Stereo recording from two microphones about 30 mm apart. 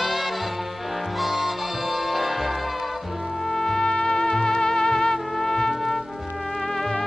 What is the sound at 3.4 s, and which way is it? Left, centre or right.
Music, centre.